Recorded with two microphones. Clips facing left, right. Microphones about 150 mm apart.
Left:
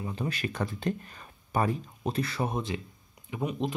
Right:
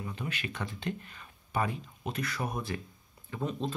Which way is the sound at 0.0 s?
35° left (ahead or behind).